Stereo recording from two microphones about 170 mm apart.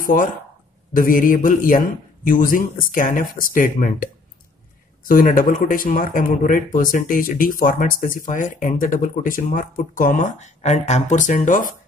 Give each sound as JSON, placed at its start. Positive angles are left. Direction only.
{"t": 0.0, "sound": "speech", "side_deg": 50}